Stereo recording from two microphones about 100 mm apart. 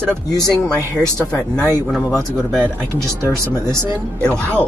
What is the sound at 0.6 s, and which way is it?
Speech, 20° right (ahead or behind).